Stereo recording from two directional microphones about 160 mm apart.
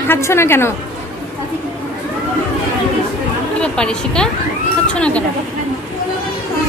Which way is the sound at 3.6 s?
5° left (ahead or behind).